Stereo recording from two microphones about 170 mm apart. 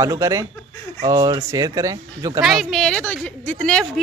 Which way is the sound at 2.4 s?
Centre (ahead or behind).